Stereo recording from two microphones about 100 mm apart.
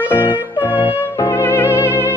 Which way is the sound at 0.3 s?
55° left (ahead or behind).